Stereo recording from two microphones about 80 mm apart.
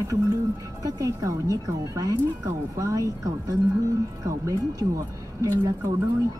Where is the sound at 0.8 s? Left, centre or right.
Right.